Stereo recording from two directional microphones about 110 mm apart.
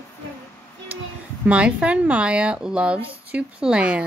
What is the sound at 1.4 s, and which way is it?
Speech, 10° right (ahead or behind).